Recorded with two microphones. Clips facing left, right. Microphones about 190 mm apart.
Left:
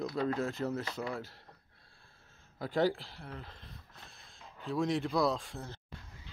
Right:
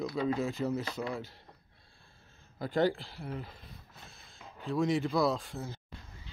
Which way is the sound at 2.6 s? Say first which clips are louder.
Right 1 dB; centre (ahead or behind).